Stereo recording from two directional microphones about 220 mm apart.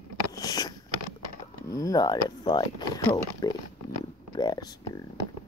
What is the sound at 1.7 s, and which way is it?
Speech, 15° left (ahead or behind).